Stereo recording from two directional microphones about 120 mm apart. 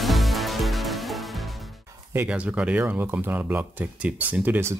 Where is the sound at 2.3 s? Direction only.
10° right (ahead or behind).